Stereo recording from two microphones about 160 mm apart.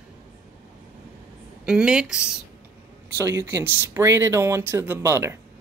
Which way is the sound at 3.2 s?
20° right (ahead or behind).